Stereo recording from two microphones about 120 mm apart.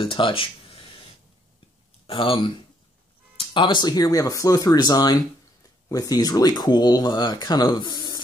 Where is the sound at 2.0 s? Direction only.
45° left (ahead or behind).